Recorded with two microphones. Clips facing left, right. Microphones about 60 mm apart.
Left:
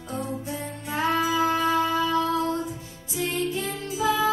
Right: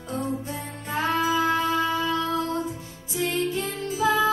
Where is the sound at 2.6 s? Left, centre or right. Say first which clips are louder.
Right 1 dB; right.